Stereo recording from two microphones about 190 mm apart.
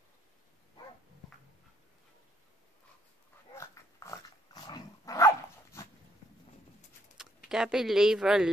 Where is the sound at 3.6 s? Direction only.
15° left (ahead or behind).